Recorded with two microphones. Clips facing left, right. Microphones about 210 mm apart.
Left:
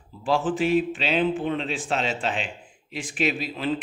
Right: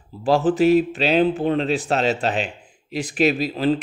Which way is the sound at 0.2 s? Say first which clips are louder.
Right 6 dB; 40° right (ahead or behind).